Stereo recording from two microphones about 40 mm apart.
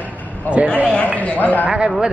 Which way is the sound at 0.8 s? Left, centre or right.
Left.